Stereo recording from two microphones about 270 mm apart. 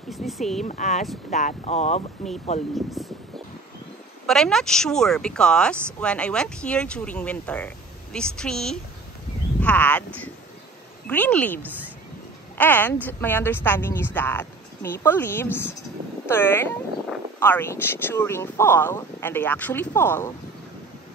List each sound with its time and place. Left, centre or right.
0.1 s speech: centre
0.7 s speech: left
2.7 s speech: centre
4.3 s a woman's voice: centre